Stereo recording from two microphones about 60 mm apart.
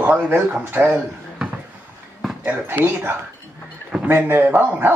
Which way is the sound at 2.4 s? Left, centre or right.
Right.